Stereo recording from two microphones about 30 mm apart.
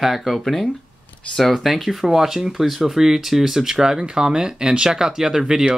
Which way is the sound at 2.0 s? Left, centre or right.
Centre.